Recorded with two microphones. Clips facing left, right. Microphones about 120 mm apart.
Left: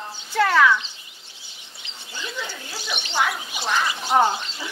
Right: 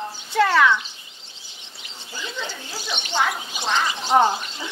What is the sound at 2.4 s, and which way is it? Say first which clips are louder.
Speech: right 1 dB; 20° right (ahead or behind).